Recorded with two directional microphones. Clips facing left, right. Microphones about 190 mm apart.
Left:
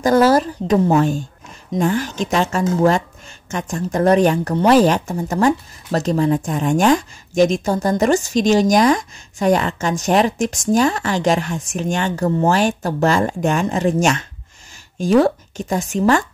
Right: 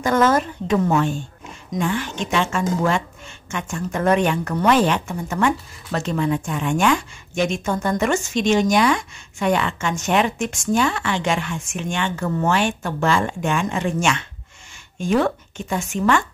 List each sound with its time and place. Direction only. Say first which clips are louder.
0.0 s speech: left 4 dB; 35° left (ahead or behind)